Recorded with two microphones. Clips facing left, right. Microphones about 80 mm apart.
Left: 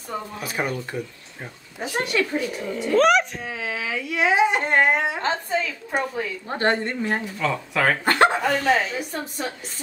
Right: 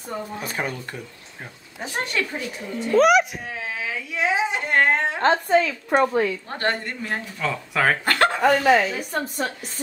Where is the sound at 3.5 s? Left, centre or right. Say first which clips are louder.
Left 2 dB; left.